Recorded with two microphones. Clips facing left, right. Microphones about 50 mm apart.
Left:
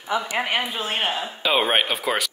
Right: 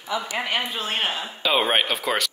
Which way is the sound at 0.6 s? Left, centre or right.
Centre.